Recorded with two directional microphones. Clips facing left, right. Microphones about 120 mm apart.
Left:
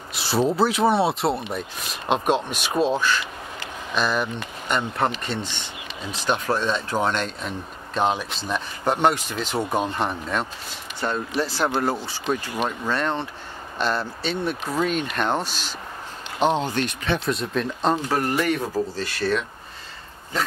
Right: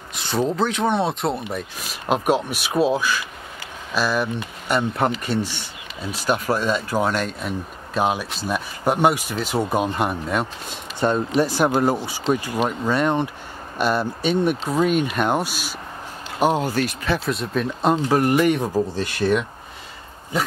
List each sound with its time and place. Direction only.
0.1 s speech: 5° left (ahead or behind)
18.0 s speech: 15° right (ahead or behind)